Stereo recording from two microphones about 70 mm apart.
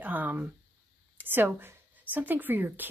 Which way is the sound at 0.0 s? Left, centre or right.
Right.